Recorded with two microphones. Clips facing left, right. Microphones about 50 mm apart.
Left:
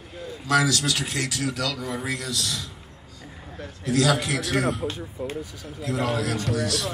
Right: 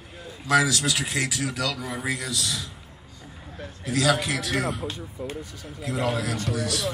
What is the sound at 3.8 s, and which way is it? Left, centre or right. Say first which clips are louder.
A man's voice: left 1 dB; centre.